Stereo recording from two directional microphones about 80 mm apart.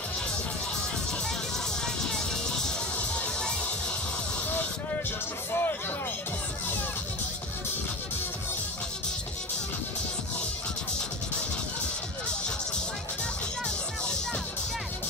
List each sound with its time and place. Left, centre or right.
2.0 s music: centre
5.5 s music: left